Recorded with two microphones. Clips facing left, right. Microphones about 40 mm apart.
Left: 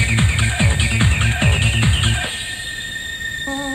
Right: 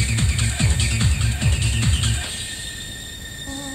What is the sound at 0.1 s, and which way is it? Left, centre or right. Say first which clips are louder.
Music: left 6 dB; left.